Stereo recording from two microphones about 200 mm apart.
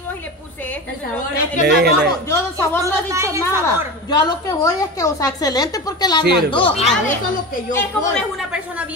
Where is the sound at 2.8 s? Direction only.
15° right (ahead or behind).